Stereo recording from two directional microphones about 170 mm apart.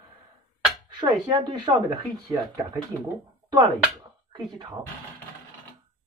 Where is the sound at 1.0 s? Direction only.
25° right (ahead or behind).